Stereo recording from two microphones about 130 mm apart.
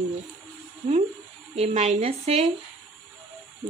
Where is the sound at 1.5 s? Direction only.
55° right (ahead or behind).